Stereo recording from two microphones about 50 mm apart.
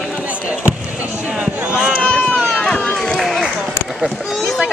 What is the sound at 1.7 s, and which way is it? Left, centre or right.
Run, centre.